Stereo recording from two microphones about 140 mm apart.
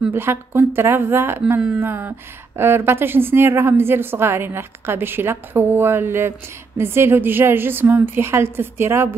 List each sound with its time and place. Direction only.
0.1 s speech: 15° right (ahead or behind)